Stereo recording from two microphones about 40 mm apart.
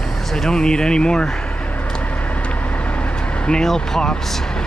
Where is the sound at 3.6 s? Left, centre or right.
Centre.